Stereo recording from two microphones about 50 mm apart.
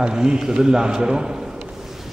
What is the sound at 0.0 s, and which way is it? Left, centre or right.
A man's voice, centre.